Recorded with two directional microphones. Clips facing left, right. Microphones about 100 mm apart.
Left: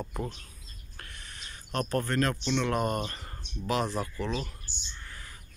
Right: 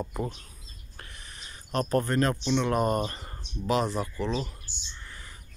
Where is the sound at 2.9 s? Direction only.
30° right (ahead or behind).